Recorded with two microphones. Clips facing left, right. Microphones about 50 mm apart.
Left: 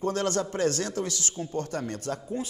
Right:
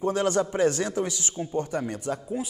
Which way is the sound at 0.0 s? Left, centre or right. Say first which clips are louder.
Right 3 dB; centre.